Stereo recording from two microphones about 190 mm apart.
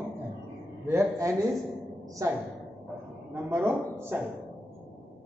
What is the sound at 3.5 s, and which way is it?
Speech, 10° right (ahead or behind).